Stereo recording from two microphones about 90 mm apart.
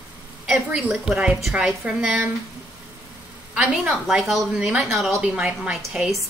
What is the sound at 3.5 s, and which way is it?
A woman's voice, 10° right (ahead or behind).